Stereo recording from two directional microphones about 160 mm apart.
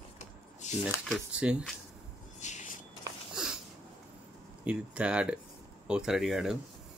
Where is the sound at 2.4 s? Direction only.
50° left (ahead or behind).